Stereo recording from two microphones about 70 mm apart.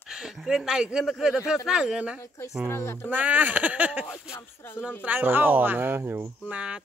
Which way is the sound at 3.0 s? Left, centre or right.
Right.